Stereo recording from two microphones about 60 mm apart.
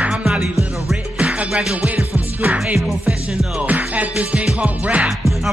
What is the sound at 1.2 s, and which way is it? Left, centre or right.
Music, right.